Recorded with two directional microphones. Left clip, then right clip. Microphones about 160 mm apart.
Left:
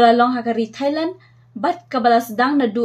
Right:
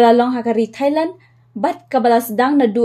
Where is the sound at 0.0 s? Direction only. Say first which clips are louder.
Right 1 dB; 30° right (ahead or behind).